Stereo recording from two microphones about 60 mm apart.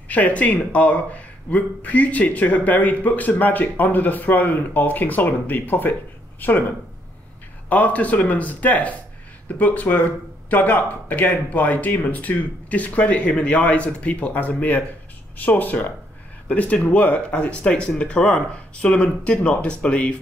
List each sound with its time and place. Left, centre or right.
0.1 s speech: left
7.7 s speech: left